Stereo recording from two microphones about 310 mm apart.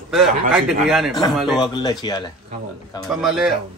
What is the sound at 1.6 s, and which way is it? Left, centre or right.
Speech, centre.